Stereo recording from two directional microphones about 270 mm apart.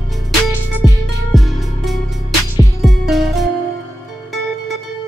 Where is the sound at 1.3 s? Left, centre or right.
Centre.